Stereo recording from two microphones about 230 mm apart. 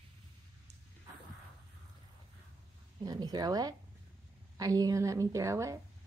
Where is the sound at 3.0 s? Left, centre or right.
Centre.